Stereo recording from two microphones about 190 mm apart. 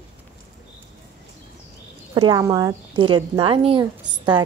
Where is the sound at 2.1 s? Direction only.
20° right (ahead or behind).